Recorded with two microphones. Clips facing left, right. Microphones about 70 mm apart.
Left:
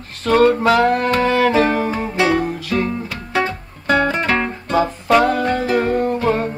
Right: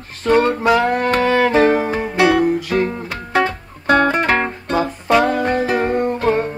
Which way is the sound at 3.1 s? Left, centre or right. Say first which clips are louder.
Right 2 dB; right.